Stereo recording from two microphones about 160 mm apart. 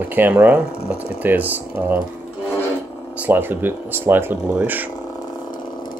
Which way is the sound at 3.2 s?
10° right (ahead or behind).